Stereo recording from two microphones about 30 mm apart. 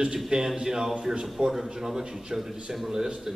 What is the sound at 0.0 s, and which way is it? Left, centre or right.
A man's voice, right.